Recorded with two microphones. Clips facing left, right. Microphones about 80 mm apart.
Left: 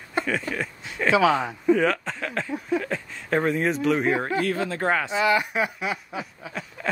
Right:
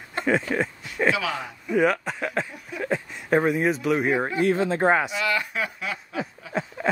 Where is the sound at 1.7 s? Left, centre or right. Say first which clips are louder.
Left 1 dB; centre.